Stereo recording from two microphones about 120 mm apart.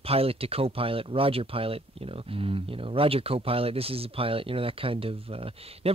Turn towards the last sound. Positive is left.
turn(degrees=-55)  # may be behind; listen again after turning